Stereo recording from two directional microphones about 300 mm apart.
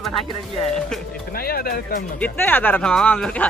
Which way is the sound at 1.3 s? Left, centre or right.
Left.